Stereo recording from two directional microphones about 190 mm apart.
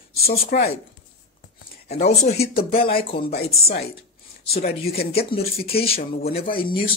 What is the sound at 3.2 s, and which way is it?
Speech, 50° left (ahead or behind).